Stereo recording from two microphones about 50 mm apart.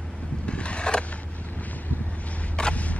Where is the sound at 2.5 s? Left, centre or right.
Left.